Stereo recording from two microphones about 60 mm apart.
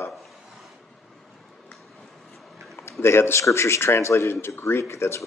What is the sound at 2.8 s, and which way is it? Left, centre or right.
A man's voice, left.